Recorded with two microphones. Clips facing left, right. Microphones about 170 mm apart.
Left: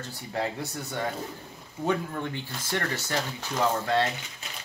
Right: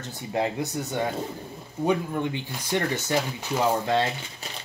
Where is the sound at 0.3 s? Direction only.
20° right (ahead or behind).